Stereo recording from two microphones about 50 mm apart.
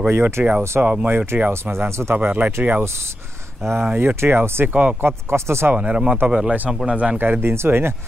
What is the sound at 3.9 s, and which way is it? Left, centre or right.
Speech, right.